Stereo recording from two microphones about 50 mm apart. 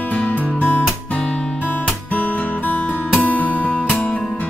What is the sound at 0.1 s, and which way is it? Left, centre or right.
Music, left.